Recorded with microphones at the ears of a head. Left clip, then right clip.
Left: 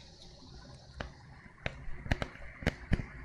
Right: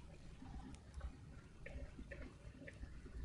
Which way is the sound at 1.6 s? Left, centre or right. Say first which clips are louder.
Left 15 dB; left.